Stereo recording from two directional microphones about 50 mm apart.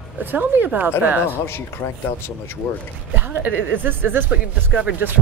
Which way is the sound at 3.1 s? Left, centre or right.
Right.